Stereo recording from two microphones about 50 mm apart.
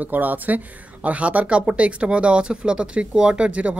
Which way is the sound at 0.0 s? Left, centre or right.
Right.